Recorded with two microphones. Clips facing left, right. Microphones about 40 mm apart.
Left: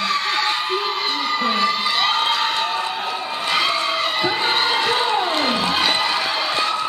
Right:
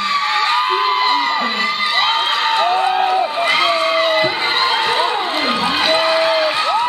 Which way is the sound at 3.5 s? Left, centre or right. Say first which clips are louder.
Right 2 dB; centre.